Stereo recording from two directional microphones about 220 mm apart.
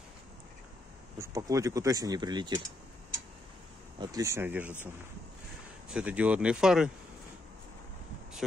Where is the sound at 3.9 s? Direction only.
15° right (ahead or behind).